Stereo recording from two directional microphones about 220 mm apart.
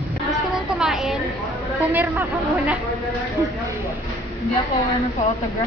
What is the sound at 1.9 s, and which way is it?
Speech, 10° right (ahead or behind).